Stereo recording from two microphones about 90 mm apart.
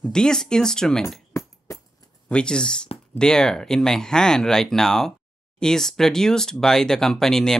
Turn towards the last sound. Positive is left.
turn(degrees=5)  # may be behind; listen again after turning